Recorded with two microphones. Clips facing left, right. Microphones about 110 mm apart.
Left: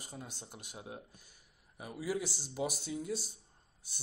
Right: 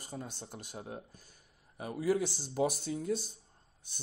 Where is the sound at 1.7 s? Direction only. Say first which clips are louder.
Right 6 dB; 5° left (ahead or behind).